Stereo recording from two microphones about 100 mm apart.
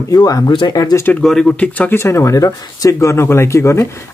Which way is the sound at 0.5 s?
55° left (ahead or behind).